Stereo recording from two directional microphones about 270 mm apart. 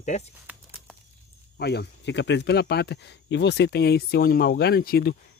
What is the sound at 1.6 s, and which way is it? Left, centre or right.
Speech, left.